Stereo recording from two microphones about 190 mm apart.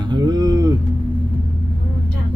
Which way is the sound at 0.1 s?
20° right (ahead or behind).